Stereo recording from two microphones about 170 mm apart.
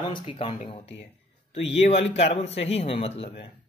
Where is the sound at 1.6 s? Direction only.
40° left (ahead or behind).